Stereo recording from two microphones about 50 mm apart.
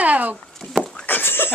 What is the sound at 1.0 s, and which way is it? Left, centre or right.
Goat, left.